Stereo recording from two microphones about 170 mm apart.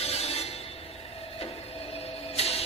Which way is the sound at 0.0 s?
35° left (ahead or behind).